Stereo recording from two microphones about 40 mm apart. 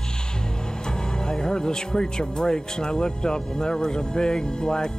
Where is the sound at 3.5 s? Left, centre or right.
Centre.